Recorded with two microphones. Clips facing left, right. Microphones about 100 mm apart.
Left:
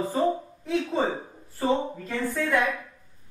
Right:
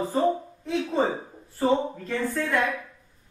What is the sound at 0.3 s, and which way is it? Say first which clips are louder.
A woman's voice: even; centre (ahead or behind).